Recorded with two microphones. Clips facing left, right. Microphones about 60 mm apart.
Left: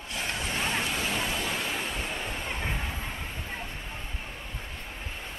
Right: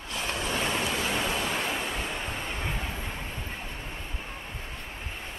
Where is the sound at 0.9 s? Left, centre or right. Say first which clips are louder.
Right 2 dB; right.